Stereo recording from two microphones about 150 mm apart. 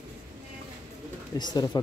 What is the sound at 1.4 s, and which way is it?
Speech, 25° left (ahead or behind).